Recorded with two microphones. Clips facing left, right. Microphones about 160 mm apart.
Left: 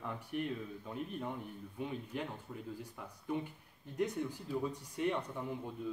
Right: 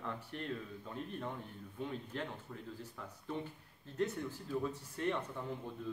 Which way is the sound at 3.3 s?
15° left (ahead or behind).